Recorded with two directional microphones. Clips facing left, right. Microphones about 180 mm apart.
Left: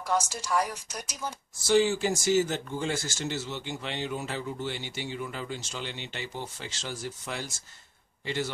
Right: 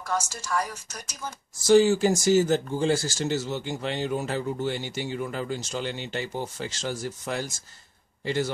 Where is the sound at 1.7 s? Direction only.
40° right (ahead or behind).